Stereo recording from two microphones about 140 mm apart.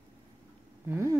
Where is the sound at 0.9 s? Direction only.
20° right (ahead or behind).